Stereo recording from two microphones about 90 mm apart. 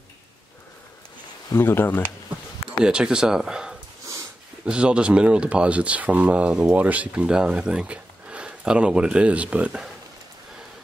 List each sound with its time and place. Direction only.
1.5 s speech: 25° left (ahead or behind)
2.8 s speech: 10° right (ahead or behind)